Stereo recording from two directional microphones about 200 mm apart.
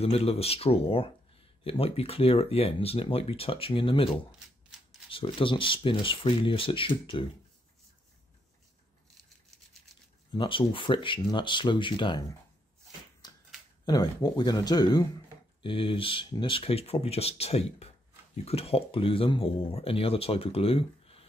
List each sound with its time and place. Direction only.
0.0 s speech: 30° left (ahead or behind)
10.3 s speech: 25° left (ahead or behind)
13.2 s finger snapping: 20° left (ahead or behind)
13.8 s speech: 20° left (ahead or behind)